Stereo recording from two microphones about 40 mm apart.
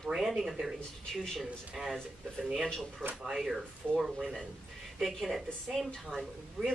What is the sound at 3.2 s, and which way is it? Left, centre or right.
Speech, centre.